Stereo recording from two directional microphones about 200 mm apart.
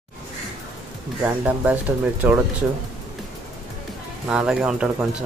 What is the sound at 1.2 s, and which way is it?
Speech, 5° right (ahead or behind).